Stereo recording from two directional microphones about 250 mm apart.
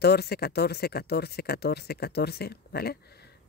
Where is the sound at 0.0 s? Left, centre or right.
Left.